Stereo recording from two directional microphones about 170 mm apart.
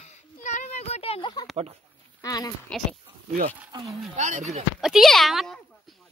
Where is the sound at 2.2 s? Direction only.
20° left (ahead or behind).